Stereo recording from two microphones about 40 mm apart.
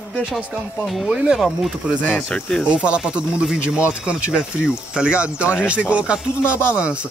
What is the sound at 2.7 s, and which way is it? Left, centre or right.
Speech, right.